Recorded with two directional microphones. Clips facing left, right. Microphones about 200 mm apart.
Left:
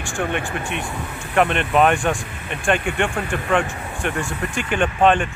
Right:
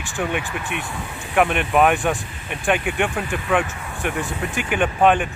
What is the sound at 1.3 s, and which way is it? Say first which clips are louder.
Speech: even; 10° right (ahead or behind).